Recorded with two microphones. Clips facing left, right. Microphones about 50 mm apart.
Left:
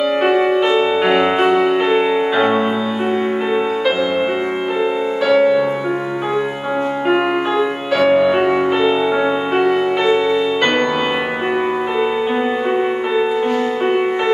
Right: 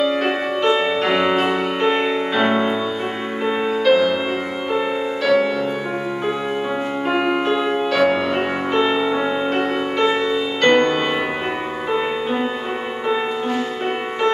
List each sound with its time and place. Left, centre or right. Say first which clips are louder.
0.0 s music: left 5 dB; left
1.9 s music: left 4 dB; centre
3.8 s music: right 2 dB; centre
5.2 s music: left 5 dB; centre
7.1 s music: left 2 dB; centre
10.6 s music: right 1 dB; centre